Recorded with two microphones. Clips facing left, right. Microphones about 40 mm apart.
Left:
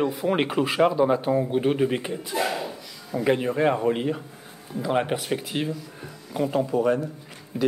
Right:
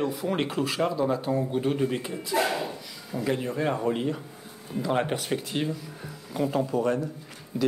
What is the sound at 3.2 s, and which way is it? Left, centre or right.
Speech, left.